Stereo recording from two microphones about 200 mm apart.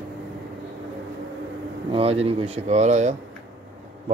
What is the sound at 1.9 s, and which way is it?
Speech, 30° right (ahead or behind).